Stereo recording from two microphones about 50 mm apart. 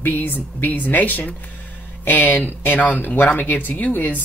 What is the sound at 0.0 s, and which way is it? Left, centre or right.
Speech, left.